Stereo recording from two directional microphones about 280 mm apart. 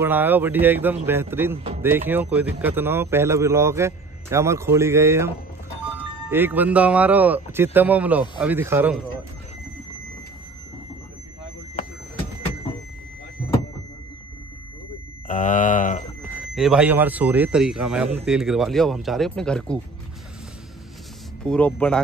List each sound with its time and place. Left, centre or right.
0.0 s speech: centre
6.3 s speech: centre
15.2 s a sound: left
16.5 s speech: centre
21.5 s speech: centre